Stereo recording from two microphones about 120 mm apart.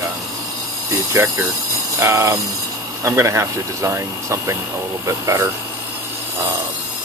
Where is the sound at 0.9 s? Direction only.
25° right (ahead or behind).